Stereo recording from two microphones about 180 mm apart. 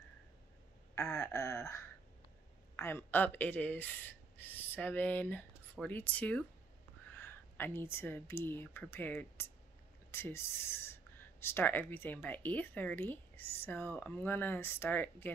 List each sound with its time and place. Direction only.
0.9 s speech: 15° left (ahead or behind)